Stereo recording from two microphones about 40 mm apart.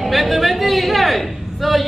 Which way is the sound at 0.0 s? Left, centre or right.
Centre.